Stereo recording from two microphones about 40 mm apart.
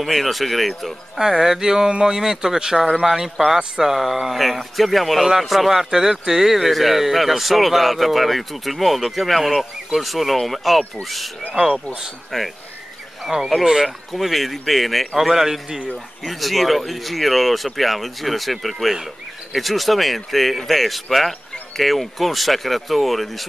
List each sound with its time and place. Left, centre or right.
0.0 s speech: centre
1.1 s speech: centre
11.6 s speech: centre
12.3 s speech: centre
13.3 s speech: right
13.8 s speech: centre
16.3 s speech: centre